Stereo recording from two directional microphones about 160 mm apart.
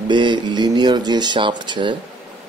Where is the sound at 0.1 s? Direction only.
30° right (ahead or behind).